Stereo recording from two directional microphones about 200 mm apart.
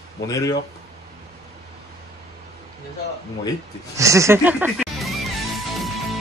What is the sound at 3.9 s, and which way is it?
Speech, 15° right (ahead or behind).